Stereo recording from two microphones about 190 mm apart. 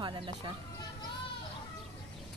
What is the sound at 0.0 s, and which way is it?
Speech, 25° right (ahead or behind).